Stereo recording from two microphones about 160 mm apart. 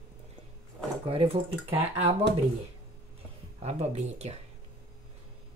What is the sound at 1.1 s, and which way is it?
Speech, 35° right (ahead or behind).